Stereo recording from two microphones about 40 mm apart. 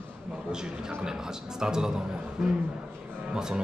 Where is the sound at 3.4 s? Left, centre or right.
Centre.